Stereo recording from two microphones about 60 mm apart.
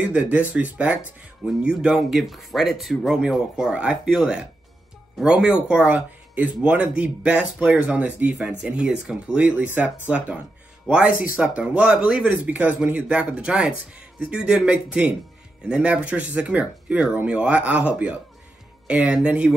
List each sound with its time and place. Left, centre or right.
0.1 s speech: right